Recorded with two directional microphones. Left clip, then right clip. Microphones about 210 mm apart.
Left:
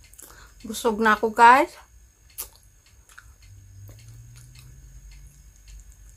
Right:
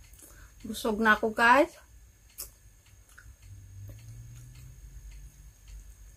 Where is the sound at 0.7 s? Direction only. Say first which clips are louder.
Left 4 dB; 15° left (ahead or behind).